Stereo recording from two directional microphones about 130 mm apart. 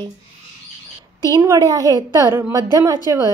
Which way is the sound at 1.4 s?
25° right (ahead or behind).